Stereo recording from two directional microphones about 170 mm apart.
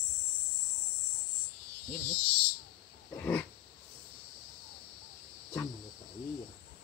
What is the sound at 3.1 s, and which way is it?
Roaring cats, 10° left (ahead or behind).